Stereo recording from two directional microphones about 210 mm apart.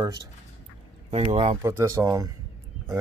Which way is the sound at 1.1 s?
30° right (ahead or behind).